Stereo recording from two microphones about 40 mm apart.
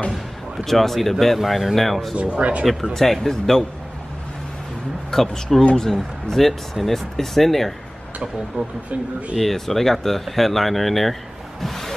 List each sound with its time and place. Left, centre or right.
0.7 s speech: centre
1.8 s speech: centre
2.1 s speech: right
2.6 s speech: centre
5.1 s speech: centre
8.6 s speech: right
9.4 s speech: centre
11.6 s a sound: centre